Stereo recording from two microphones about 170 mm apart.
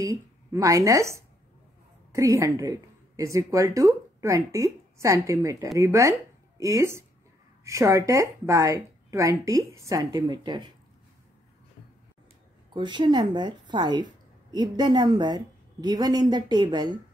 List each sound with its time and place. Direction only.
0.0 s a woman's voice: 20° right (ahead or behind)
12.7 s a woman's voice: 25° right (ahead or behind)